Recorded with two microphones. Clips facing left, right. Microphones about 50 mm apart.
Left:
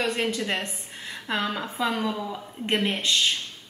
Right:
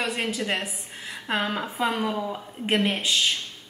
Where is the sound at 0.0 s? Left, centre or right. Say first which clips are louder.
Left 1 dB; centre.